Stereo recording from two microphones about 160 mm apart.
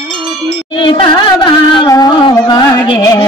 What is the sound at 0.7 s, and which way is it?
Music, 30° left (ahead or behind).